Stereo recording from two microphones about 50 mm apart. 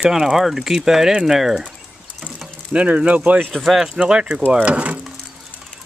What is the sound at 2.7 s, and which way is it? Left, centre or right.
Speech, right.